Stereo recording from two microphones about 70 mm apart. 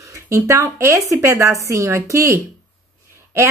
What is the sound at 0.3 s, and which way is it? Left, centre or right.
A woman's voice, right.